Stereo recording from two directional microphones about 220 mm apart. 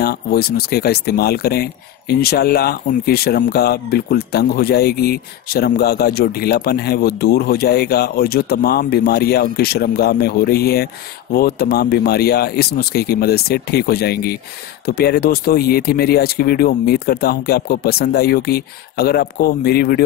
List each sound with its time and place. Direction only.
0.0 s speech: 45° left (ahead or behind)